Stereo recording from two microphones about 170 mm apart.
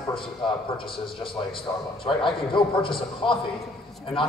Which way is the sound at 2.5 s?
30° left (ahead or behind).